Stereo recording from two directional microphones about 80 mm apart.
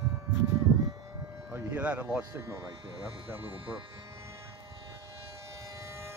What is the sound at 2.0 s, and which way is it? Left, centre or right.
Speech, right.